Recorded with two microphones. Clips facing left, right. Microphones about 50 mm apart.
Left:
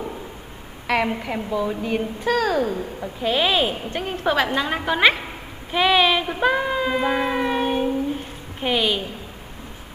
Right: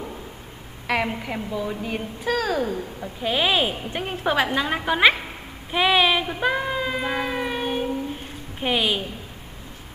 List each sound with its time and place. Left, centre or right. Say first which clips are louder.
1.0 s a woman's voice: left 3 dB; centre
3.2 s a woman's voice: left 2 dB; centre
8.5 s a woman's voice: left 1 dB; centre